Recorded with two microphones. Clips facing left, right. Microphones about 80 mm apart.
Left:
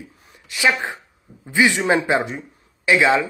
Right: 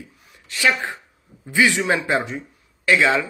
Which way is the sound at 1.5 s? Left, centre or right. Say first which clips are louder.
Left 1 dB; left.